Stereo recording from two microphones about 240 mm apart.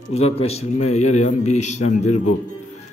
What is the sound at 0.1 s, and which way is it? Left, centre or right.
A man's voice, left.